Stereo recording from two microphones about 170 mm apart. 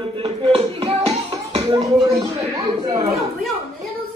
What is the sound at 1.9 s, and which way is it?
Speech, 20° right (ahead or behind).